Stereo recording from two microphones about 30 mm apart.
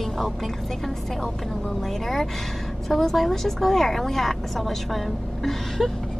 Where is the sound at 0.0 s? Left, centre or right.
Centre.